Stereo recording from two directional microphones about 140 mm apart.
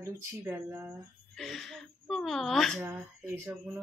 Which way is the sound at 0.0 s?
20° right (ahead or behind).